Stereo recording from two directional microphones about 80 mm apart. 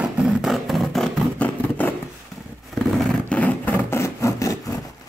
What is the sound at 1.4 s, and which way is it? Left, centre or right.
Vehicle, left.